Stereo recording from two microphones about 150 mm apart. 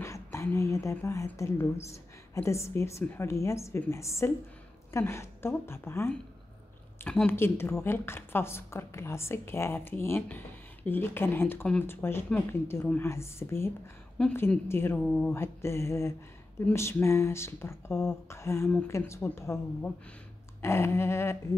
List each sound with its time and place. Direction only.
0.0 s speech: 20° left (ahead or behind)